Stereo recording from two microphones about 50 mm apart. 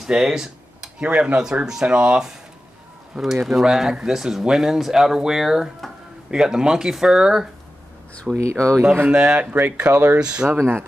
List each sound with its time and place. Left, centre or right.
0.0 s speech: centre
8.3 s speech: right
9.5 s speech: right
10.2 s speech: centre
10.6 s speech: right